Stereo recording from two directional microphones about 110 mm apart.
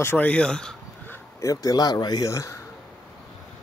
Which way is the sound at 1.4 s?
35° left (ahead or behind).